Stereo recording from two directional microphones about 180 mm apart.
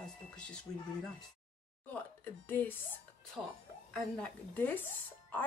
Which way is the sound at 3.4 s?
5° right (ahead or behind).